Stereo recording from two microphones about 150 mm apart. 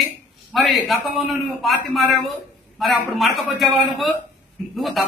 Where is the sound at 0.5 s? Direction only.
Centre (ahead or behind).